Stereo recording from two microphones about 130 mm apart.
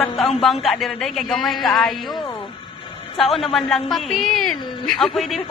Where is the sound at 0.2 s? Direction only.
Centre (ahead or behind).